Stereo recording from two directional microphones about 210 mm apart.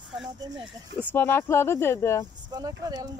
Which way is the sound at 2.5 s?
20° right (ahead or behind).